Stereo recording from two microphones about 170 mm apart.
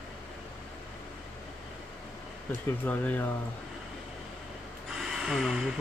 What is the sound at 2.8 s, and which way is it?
Speech, 10° left (ahead or behind).